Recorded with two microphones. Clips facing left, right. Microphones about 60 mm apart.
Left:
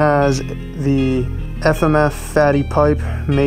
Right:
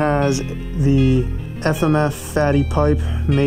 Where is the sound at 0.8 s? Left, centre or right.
Left.